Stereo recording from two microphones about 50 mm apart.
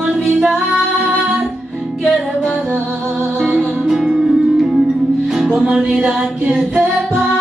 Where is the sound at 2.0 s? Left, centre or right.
Centre.